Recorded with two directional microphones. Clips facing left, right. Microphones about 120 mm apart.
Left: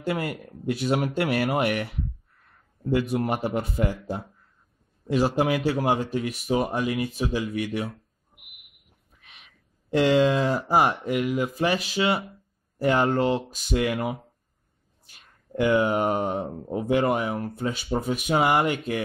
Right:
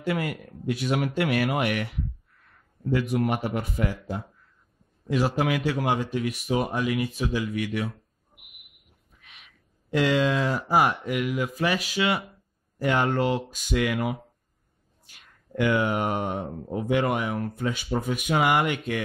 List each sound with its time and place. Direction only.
0.0 s speech: 30° left (ahead or behind)
9.8 s speech: 30° left (ahead or behind)
15.1 s speech: 30° left (ahead or behind)